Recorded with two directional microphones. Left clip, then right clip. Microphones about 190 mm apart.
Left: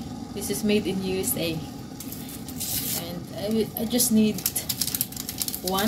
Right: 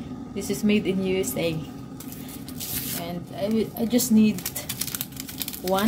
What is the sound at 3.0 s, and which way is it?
Speech, 50° right (ahead or behind).